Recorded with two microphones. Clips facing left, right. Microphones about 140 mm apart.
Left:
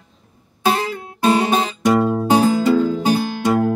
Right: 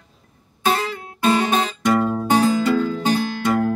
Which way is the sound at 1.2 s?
30° left (ahead or behind).